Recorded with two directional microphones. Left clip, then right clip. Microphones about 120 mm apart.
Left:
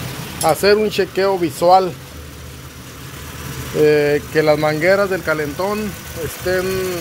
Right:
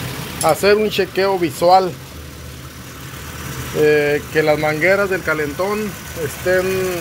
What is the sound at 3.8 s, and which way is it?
Speech, 35° left (ahead or behind).